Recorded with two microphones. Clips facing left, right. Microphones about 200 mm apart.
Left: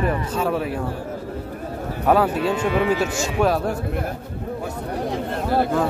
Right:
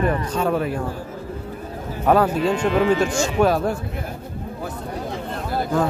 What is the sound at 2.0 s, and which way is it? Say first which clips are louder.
Speech: right 1 dB; 5° left (ahead or behind).